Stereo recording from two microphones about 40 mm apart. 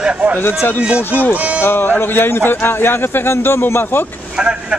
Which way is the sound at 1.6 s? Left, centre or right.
Left.